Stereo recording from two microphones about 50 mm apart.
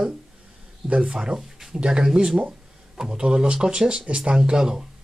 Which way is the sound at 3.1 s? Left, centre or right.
Centre.